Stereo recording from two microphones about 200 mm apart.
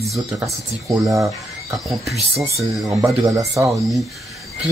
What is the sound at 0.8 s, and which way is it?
Speech, 15° right (ahead or behind).